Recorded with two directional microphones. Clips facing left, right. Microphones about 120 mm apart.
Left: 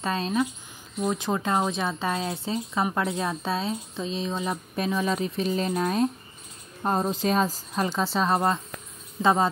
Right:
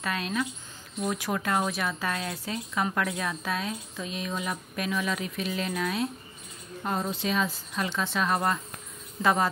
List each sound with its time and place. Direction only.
0.0 s a woman's voice: 30° left (ahead or behind)